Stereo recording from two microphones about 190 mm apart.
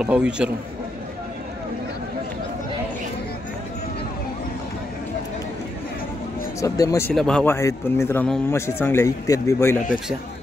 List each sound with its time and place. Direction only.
0.0 s a man's voice: 5° right (ahead or behind)
6.6 s speech: 15° left (ahead or behind)
7.2 s speech: 5° left (ahead or behind)